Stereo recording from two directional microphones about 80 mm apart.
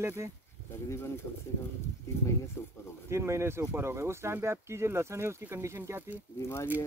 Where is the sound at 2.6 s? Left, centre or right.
Left.